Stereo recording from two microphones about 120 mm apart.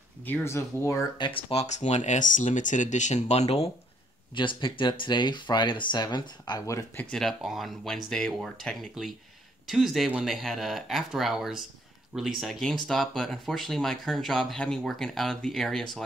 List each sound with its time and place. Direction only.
0.2 s speech: 20° left (ahead or behind)
1.1 s speech: 40° left (ahead or behind)
1.5 s speech: 65° left (ahead or behind)
4.4 s speech: 45° left (ahead or behind)
6.6 s speech: 25° left (ahead or behind)
7.0 s speech: 5° left (ahead or behind)